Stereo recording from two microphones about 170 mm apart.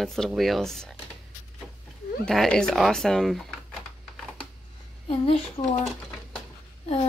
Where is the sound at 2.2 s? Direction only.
5° left (ahead or behind).